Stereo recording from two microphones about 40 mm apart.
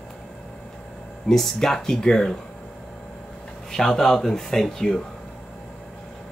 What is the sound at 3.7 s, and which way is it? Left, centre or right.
Speech, centre.